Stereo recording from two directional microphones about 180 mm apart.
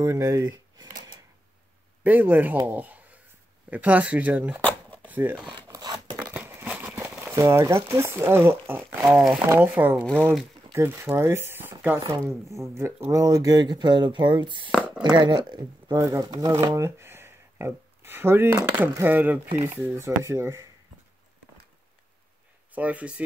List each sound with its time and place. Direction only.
0.0 s speech: 20° right (ahead or behind)
2.0 s speech: 10° right (ahead or behind)
5.0 s a sound: 10° right (ahead or behind)
5.5 s a sound: 25° right (ahead or behind)
6.3 s crumpling: 10° right (ahead or behind)
9.0 s speech: centre (ahead or behind); by 14.7 s 25° right (ahead or behind)
14.7 s a sound: 5° right (ahead or behind)
15.0 s speech: 25° right (ahead or behind)
22.7 s speech: 10° right (ahead or behind)